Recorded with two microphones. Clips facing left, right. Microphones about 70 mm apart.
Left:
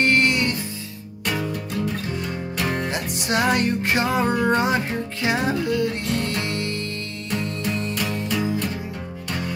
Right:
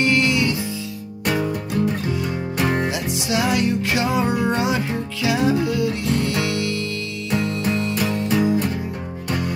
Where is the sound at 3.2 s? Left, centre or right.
Left.